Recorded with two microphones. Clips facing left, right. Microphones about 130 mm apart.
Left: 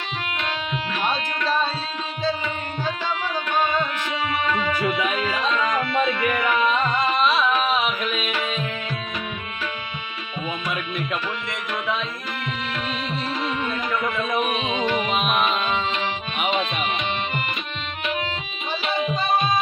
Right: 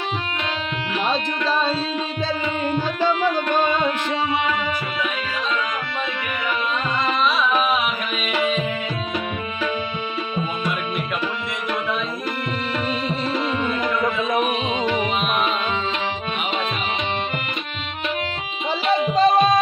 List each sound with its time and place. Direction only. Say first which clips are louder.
3.3 s music: right 4 dB; 50° right (ahead or behind)
18.9 s music: right 6 dB; 30° right (ahead or behind)